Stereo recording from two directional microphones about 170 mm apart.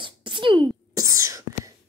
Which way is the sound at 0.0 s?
30° right (ahead or behind).